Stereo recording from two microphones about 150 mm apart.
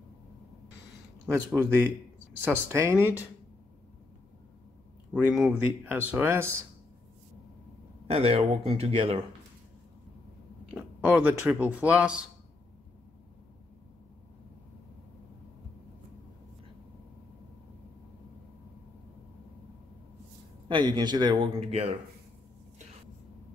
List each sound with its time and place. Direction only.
1.3 s speech: 20° right (ahead or behind)
5.1 s speech: 5° right (ahead or behind)
8.1 s a man's voice: 40° right (ahead or behind)
10.7 s speech: 10° right (ahead or behind)
20.6 s a man's voice: 30° right (ahead or behind)